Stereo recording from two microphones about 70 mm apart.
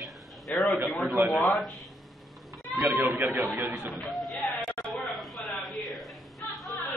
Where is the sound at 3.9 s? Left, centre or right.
Centre.